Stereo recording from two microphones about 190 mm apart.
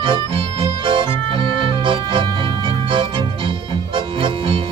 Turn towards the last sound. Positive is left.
turn(degrees=-25)  # may be behind; listen again after turning